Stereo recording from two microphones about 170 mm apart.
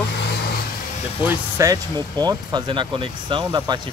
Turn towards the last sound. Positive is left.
turn(degrees=-25)  # may be behind; listen again after turning